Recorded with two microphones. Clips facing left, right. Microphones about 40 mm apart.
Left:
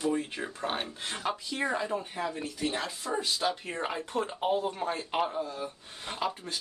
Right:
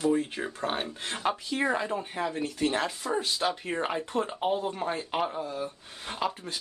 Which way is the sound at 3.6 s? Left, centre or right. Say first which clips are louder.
Right 4 dB; centre.